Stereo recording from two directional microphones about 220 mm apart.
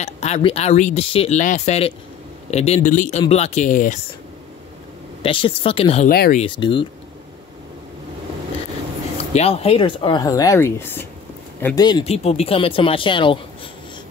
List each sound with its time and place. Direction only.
0.0 s speech: 30° left (ahead or behind)
5.2 s speech: 25° left (ahead or behind)
6.0 s speech: 45° left (ahead or behind)
6.4 s speech: 20° left (ahead or behind)
9.3 s speech: 30° left (ahead or behind)